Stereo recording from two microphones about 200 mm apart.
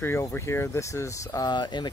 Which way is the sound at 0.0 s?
10° left (ahead or behind).